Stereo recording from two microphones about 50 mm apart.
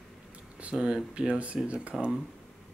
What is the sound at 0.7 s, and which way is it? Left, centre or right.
Speech, centre.